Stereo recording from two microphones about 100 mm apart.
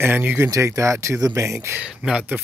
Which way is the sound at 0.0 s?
20° right (ahead or behind).